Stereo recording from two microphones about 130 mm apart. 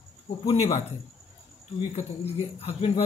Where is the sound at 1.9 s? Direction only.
55° left (ahead or behind).